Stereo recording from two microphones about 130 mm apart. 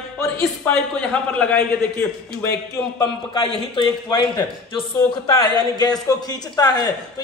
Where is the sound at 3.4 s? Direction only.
40° left (ahead or behind).